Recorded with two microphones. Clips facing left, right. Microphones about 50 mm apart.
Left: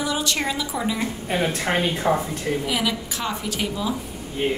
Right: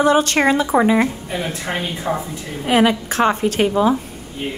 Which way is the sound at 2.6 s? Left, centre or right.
Right.